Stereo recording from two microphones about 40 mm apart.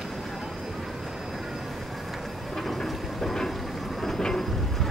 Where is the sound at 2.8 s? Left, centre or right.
Centre.